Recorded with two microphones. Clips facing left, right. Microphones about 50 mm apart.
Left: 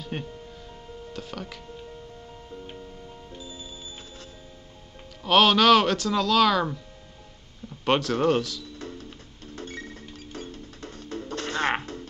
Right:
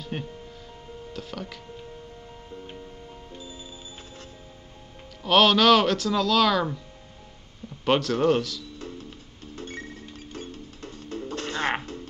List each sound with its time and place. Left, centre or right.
0.0 s speech: centre
2.5 s music: centre
3.3 s music: right
5.2 s speech: centre
7.8 s speech: centre
10.8 s music: left